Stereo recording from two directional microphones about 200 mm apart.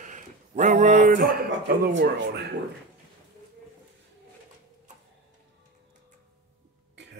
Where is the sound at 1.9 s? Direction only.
60° right (ahead or behind).